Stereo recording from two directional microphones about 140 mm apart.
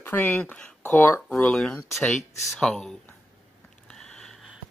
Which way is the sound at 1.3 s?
5° left (ahead or behind).